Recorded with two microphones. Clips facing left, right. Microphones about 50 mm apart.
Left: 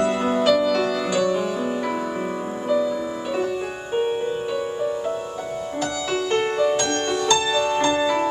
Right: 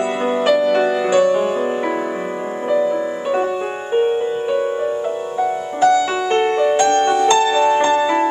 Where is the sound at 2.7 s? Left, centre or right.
Right.